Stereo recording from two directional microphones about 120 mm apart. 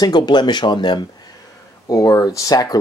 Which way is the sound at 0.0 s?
35° left (ahead or behind).